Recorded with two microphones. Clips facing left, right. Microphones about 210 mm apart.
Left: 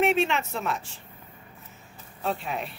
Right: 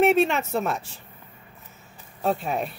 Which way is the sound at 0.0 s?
40° right (ahead or behind).